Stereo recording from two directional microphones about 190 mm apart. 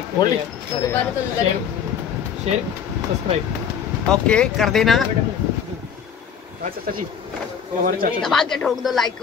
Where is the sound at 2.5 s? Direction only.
35° right (ahead or behind).